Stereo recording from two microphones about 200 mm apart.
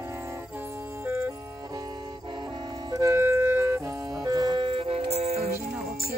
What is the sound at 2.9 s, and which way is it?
Music, 15° right (ahead or behind).